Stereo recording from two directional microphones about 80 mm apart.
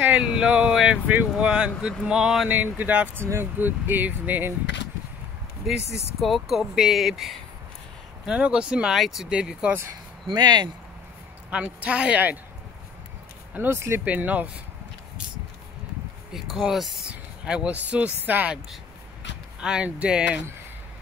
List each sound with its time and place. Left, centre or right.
0.0 s a sound: centre
1.4 s speech: centre
2.5 s speech: right
5.7 s speech: centre
8.9 s speech: centre
10.2 s speech: right
11.5 s speech: centre
13.5 s speech: right
14.0 s speech: centre
16.3 s speech: centre
17.1 s speech: centre
19.6 s speech: centre